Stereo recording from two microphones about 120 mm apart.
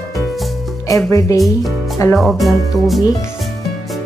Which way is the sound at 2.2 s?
Centre (ahead or behind).